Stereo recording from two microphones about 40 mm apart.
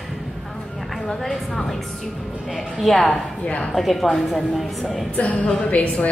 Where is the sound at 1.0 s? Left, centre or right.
Centre.